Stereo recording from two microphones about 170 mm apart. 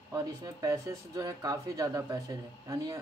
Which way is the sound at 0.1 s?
20° right (ahead or behind).